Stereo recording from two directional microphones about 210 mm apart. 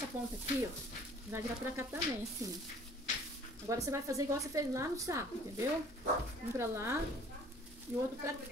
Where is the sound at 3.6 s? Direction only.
15° right (ahead or behind).